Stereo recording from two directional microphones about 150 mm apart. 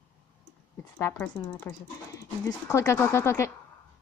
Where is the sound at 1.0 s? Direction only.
15° left (ahead or behind).